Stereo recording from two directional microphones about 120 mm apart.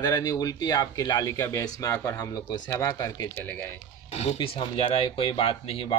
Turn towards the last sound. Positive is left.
turn(degrees=50)  # may be behind; listen again after turning